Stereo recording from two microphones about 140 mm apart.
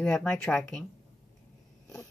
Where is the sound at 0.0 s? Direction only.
15° left (ahead or behind).